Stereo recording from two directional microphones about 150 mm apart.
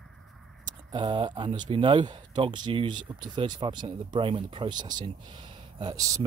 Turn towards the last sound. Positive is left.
turn(degrees=-25)  # may be behind; listen again after turning